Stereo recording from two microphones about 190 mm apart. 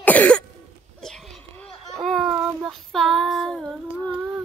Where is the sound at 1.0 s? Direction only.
Centre (ahead or behind).